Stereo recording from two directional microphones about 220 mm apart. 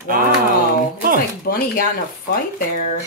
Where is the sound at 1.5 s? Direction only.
45° left (ahead or behind).